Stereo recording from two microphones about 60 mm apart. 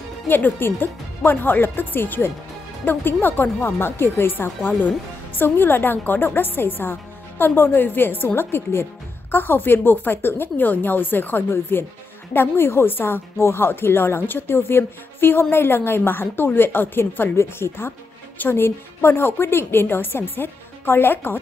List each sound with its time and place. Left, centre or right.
0.3 s a woman's voice: left